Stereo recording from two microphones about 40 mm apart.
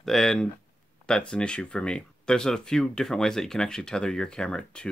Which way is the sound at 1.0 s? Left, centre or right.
Left.